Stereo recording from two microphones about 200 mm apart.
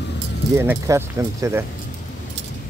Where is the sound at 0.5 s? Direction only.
10° right (ahead or behind).